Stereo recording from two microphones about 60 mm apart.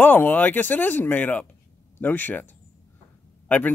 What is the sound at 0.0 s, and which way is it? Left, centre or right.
A man's voice, left.